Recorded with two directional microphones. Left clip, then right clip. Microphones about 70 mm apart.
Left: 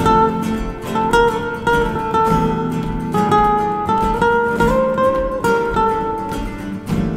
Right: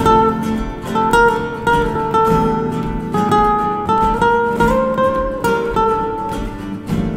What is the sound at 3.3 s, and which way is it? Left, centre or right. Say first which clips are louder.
Music: right 1 dB; right.